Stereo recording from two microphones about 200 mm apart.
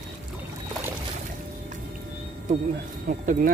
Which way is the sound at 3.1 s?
45° right (ahead or behind).